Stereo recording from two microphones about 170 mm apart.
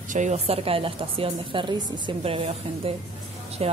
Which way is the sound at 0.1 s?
45° right (ahead or behind).